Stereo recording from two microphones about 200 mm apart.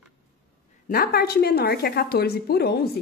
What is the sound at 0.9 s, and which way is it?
A woman's voice, 50° left (ahead or behind).